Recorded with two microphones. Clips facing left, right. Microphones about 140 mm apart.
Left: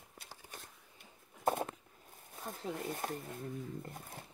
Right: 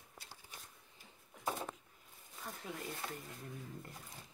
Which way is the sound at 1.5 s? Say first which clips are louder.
Left 7 dB; 55° left (ahead or behind).